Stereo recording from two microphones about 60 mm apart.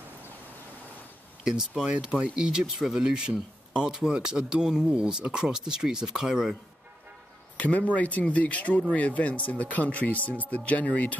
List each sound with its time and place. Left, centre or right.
1.4 s speech: centre
7.5 s speech: left